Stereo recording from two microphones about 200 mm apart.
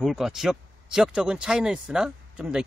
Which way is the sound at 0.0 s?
Centre (ahead or behind).